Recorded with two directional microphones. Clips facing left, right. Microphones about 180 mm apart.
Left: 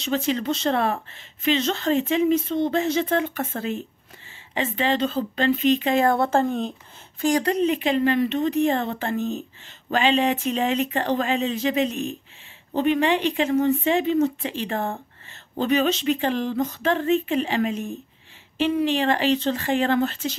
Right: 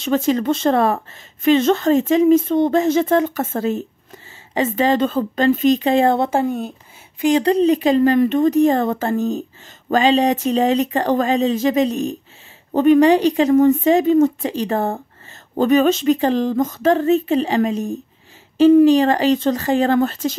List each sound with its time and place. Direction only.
0.0 s speech: 45° right (ahead or behind); by 6.7 s 10° right (ahead or behind)
7.2 s speech: 20° right (ahead or behind)
7.4 s speech: 35° right (ahead or behind)